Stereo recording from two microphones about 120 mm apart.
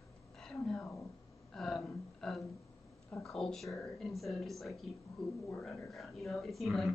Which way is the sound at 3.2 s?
5° left (ahead or behind).